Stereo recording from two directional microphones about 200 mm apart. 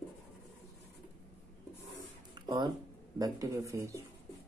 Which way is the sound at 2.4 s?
25° right (ahead or behind).